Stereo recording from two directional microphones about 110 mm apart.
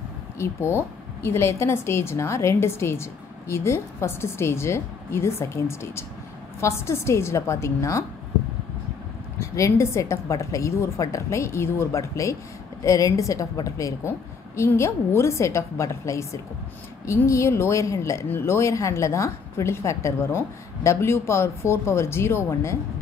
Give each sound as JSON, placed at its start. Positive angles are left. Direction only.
{"t": 0.4, "sound": "a woman's voice", "side_deg": 20}
{"t": 9.4, "sound": "a woman's voice", "side_deg": 25}